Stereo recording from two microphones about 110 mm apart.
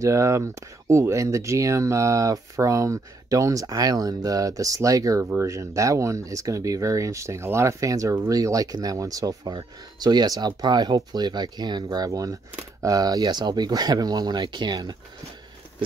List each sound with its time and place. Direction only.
0.0 s speech: 30° right (ahead or behind)